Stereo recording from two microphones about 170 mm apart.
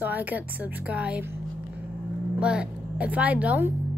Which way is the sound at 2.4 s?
5° right (ahead or behind).